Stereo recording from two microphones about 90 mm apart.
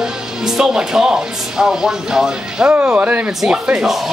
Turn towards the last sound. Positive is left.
turn(degrees=-15)  # may be behind; listen again after turning